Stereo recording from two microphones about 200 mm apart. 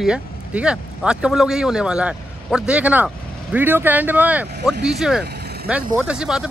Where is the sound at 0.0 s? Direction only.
5° right (ahead or behind).